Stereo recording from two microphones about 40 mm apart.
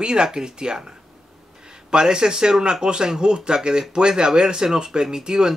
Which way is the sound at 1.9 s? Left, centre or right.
Centre.